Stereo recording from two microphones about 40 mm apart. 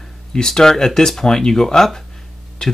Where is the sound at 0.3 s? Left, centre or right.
Centre.